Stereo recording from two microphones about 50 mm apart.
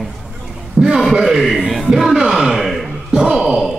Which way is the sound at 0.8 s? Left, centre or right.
Right.